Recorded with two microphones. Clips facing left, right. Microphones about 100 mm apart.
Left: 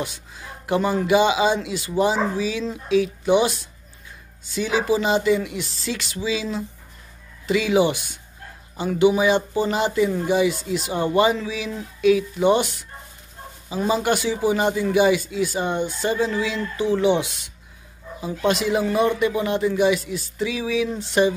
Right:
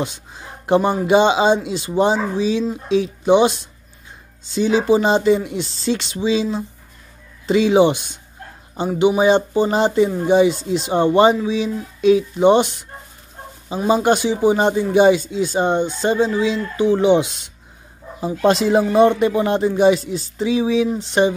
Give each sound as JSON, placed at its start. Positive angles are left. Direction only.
{"t": 0.0, "sound": "speech", "side_deg": -25}
{"t": 13.8, "sound": "speech", "side_deg": -30}
{"t": 18.2, "sound": "speech", "side_deg": -35}